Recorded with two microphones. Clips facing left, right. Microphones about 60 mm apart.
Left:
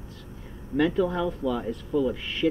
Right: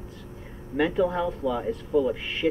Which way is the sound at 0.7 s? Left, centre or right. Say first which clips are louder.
Even; centre.